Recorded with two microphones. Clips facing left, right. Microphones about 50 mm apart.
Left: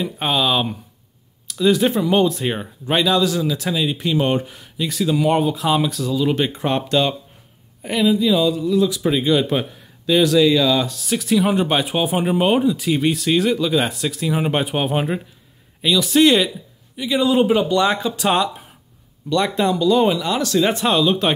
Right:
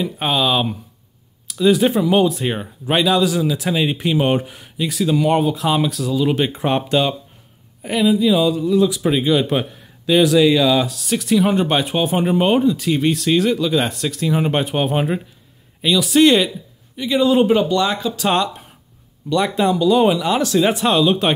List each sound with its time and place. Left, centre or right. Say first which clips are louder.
0.0 s speech: right 1 dB; centre
3.7 s speech: right 1 dB; right
4.8 s speech: right 1 dB; centre
10.9 s speech: right 1 dB; centre
17.7 s speech: left 1 dB; left
18.2 s speech: right 1 dB; centre
19.2 s speech: right 1 dB; centre